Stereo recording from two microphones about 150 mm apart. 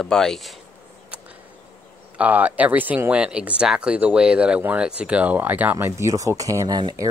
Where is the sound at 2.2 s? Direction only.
10° right (ahead or behind).